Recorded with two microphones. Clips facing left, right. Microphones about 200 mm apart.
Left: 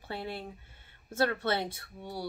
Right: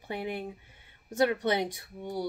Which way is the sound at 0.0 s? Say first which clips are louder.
Right 4 dB; 15° right (ahead or behind).